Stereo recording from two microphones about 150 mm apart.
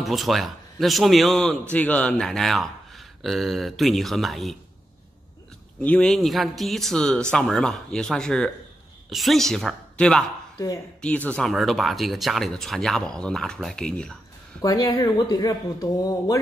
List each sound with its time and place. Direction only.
0.0 s speech: centre (ahead or behind)
5.8 s speech: 5° left (ahead or behind)
14.6 s speech: 25° left (ahead or behind)